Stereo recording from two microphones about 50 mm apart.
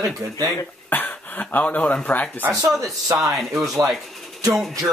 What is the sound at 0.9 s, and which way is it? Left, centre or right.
Speech, left.